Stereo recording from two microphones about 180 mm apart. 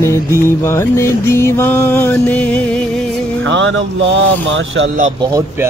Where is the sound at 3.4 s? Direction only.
90° right.